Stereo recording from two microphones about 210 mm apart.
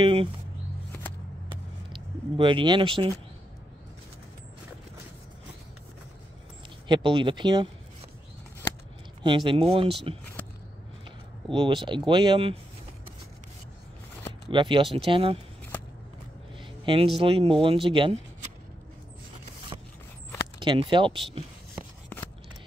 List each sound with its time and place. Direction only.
0.0 s a sound: 25° right (ahead or behind)
1.9 s speech: 25° right (ahead or behind)
6.9 s speech: 20° right (ahead or behind)
9.2 s speech: 20° right (ahead or behind)
11.5 s speech: 20° right (ahead or behind)
14.5 s speech: 20° right (ahead or behind)
16.8 s speech: 25° right (ahead or behind)
20.5 s speech: 20° right (ahead or behind)
22.1 s scissors: 10° left (ahead or behind)